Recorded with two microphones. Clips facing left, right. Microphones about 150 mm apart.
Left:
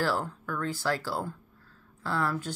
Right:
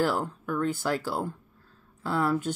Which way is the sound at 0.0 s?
20° right (ahead or behind).